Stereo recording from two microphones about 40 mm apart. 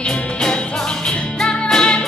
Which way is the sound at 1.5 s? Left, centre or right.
Centre.